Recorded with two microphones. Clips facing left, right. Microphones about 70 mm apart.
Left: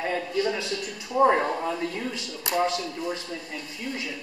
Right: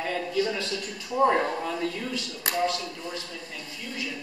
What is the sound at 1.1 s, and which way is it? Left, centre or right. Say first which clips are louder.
Speech: left 2 dB; centre.